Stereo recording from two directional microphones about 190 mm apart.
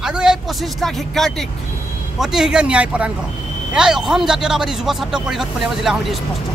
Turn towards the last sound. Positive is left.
turn(degrees=0)  # may be behind; listen again after turning